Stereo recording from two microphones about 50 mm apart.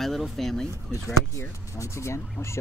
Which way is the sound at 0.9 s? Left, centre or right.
Left.